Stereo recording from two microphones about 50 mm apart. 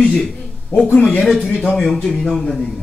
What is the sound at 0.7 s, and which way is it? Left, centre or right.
Speech, left.